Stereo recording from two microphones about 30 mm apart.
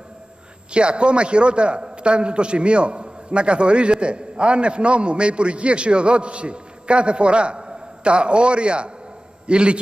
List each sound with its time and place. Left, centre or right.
0.7 s a man's voice: right